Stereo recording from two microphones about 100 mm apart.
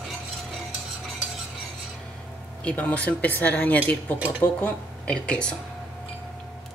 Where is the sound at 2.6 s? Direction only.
15° left (ahead or behind).